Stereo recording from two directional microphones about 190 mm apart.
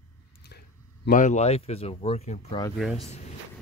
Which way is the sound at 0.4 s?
55° left (ahead or behind).